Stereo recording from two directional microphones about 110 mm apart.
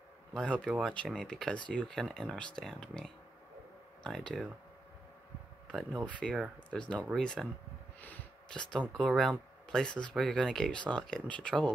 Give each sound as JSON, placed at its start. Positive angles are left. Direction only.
{"t": 0.3, "sound": "speech", "side_deg": 5}
{"t": 6.0, "sound": "speech", "side_deg": 10}